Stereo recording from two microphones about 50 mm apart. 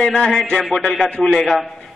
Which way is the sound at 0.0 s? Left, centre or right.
Centre.